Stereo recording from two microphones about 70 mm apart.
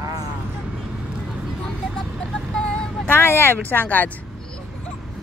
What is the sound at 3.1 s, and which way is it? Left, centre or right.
Speech, left.